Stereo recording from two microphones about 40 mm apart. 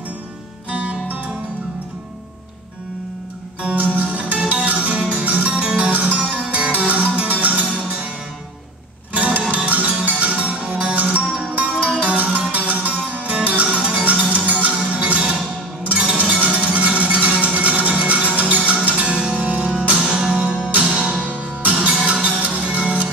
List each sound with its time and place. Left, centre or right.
0.7 s music: right
3.7 s music: right
9.1 s music: right
20.0 s music: centre
21.3 s music: right